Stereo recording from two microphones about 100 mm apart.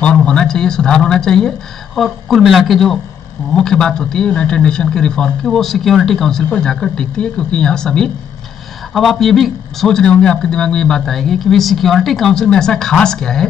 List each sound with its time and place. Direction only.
0.0 s speech: 10° left (ahead or behind)